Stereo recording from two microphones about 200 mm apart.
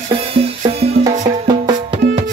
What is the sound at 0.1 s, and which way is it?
Music, 30° right (ahead or behind).